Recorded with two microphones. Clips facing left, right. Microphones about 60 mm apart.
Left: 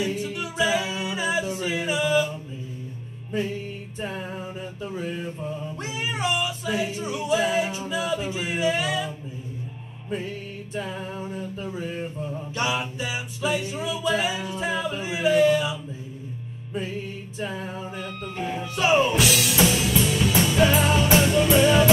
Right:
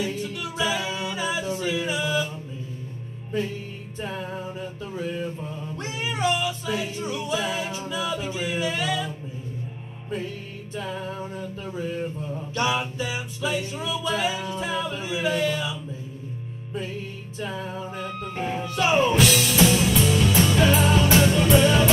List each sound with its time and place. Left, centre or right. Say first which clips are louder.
0.0 s music: left 1 dB; left
4.0 s music: even; left
4.3 s music: right 1 dB; centre
4.9 s music: right 2 dB; left
5.8 s yodeling: right 3 dB; left
6.2 s music: right 2 dB; left
7.9 s singing: left 2 dB; left
10.1 s music: left 1 dB; left
12.5 s music: right 2 dB; left
17.4 s music: even; left
17.9 s music: right 1 dB; right
18.8 s music: left 1 dB; centre
19.1 s music: right 2 dB; centre